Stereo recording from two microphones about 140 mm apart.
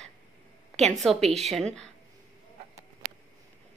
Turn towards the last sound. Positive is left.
turn(degrees=-65)  # may be behind; listen again after turning